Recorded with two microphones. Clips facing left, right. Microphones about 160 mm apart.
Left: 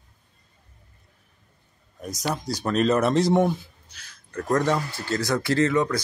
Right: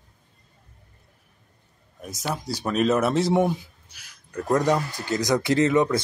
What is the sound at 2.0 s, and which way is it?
Speech, 5° right (ahead or behind).